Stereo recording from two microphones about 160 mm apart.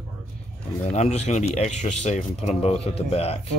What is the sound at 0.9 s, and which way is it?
Speech, 45° left (ahead or behind).